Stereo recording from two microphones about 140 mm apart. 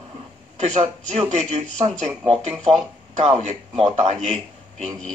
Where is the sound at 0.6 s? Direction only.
55° right (ahead or behind).